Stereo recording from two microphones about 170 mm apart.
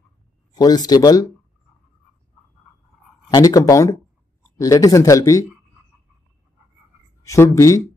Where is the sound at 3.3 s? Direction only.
20° left (ahead or behind).